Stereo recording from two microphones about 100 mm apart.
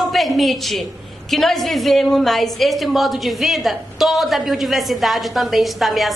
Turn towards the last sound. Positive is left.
turn(degrees=0)  # may be behind; listen again after turning